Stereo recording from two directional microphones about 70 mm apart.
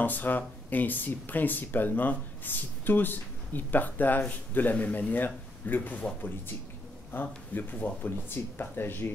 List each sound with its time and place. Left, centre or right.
0.0 s speech: left
7.1 s speech: left